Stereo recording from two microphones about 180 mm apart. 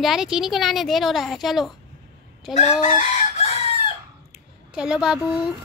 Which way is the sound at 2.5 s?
40° left (ahead or behind).